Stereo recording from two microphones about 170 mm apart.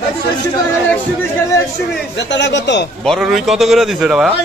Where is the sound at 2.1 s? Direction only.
90° left.